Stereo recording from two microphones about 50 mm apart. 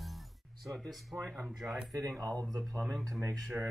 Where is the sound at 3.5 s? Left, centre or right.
Right.